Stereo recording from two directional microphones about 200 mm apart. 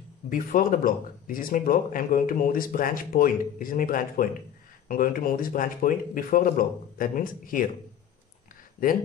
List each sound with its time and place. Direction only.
0.3 s speech: 45° left (ahead or behind)
8.8 s speech: 45° left (ahead or behind)